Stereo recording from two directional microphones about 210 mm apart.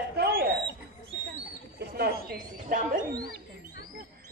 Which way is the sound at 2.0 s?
45° right (ahead or behind).